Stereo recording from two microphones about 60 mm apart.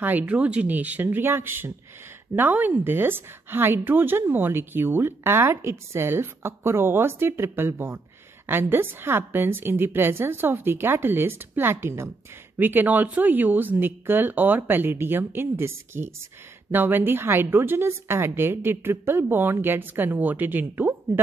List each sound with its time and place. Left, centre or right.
0.3 s speech: centre
1.0 s speech: right
12.5 s speech: right
16.7 s speech: right